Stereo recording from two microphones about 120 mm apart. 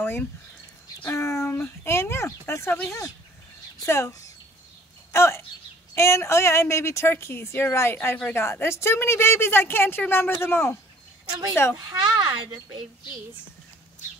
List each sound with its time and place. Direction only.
0.0 s speech: 15° left (ahead or behind)
11.2 s speech: 35° right (ahead or behind)